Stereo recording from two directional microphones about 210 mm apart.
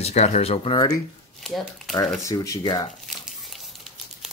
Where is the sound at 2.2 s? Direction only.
15° left (ahead or behind).